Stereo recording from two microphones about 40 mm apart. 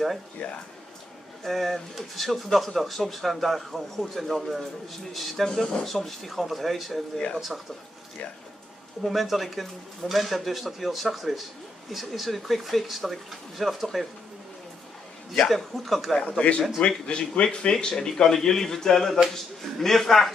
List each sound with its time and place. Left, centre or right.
0.4 s speech: left
1.4 s speech: centre
5.5 s speech: centre
5.9 s speech: centre
9.0 s speech: centre
15.5 s speech: centre
16.2 s speech: left; by 20.3 s centre